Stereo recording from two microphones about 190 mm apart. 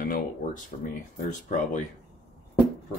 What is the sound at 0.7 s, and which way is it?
Speech, 35° left (ahead or behind).